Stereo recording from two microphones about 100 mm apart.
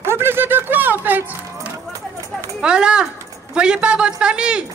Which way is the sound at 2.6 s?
10° right (ahead or behind).